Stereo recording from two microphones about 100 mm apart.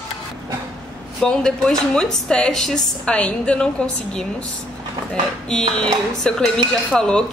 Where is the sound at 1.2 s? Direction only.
5° left (ahead or behind).